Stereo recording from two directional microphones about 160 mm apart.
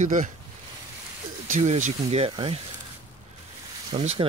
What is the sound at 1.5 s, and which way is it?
Speech, 50° right (ahead or behind).